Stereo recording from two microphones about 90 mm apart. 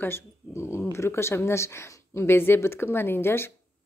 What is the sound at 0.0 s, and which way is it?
A woman's voice, 25° left (ahead or behind).